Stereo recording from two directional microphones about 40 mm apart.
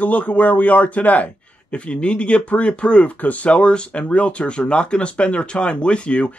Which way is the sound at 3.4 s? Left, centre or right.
Left.